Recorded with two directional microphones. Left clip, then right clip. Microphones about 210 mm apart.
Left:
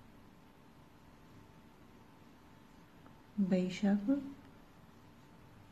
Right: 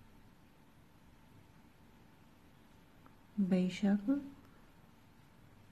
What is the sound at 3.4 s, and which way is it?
Speech, 20° right (ahead or behind).